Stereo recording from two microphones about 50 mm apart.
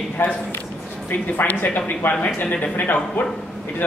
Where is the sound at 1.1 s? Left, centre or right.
Left.